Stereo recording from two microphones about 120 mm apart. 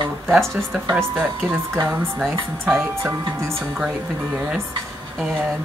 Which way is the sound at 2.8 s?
20° right (ahead or behind).